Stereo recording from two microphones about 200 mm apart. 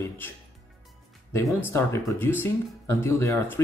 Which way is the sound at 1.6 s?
10° left (ahead or behind).